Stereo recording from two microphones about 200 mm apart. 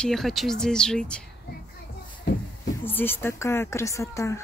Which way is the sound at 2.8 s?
10° left (ahead or behind).